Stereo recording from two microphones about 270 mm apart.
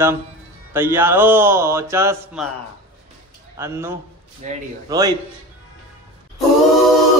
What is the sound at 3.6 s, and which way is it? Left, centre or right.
Speech, centre.